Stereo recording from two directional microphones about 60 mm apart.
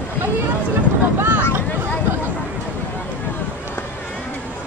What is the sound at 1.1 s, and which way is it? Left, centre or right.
Boat, right.